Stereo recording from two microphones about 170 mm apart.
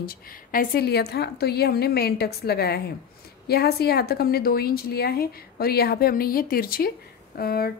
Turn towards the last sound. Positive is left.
turn(degrees=65)  # may be behind; listen again after turning